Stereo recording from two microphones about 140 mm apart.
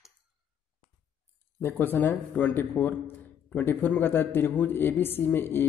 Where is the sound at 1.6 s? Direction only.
15° left (ahead or behind).